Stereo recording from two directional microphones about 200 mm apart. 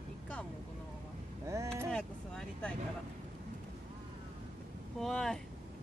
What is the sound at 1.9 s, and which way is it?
Vehicle, 5° left (ahead or behind).